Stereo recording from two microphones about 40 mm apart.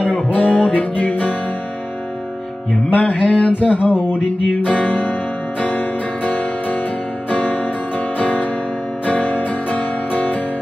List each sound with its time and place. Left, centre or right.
0.0 s music: left
2.7 s music: left
3.3 s a sound: left
4.6 s music: left